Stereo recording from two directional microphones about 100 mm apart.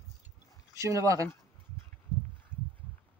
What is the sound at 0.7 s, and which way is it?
Speech, 35° right (ahead or behind).